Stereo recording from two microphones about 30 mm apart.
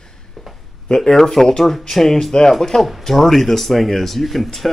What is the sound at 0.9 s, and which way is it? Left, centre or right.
Speech, left.